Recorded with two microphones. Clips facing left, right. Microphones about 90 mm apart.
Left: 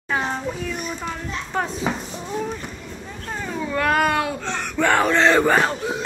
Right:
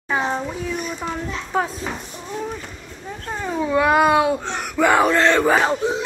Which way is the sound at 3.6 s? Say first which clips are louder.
Right 4 dB; 15° right (ahead or behind).